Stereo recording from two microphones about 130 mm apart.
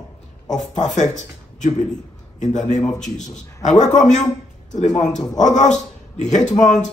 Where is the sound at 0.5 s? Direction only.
65° left (ahead or behind).